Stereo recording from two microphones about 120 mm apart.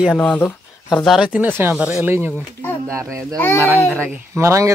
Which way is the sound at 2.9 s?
25° right (ahead or behind).